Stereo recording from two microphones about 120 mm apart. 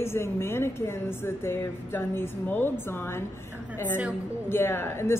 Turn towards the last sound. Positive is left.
turn(degrees=20)  # may be behind; listen again after turning